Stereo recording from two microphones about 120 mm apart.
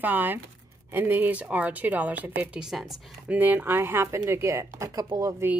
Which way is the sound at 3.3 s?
15° right (ahead or behind).